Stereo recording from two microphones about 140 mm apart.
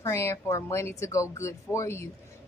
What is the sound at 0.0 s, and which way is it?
A woman's voice, 20° left (ahead or behind).